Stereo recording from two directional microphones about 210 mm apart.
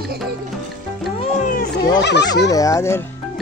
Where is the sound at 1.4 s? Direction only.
40° left (ahead or behind).